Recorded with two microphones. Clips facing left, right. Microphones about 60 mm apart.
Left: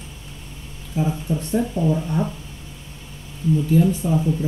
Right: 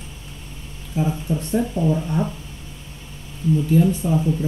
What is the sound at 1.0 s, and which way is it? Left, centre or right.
Speech, right.